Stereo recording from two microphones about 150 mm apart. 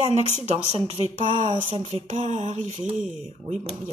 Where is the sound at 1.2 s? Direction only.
40° right (ahead or behind).